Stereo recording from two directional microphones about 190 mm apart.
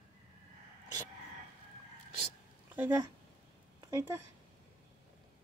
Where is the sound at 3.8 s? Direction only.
15° right (ahead or behind).